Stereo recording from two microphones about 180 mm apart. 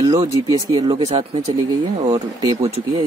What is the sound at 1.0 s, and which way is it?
Speech, 35° right (ahead or behind).